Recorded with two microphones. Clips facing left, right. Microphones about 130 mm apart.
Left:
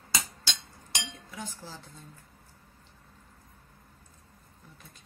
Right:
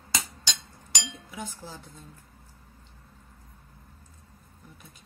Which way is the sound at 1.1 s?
Centre (ahead or behind).